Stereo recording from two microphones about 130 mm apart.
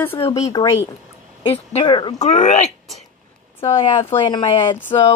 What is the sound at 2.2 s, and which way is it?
Speech, 65° left (ahead or behind).